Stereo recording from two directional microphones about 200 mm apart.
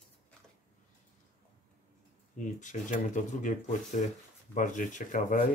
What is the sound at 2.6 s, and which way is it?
Speech, 40° left (ahead or behind).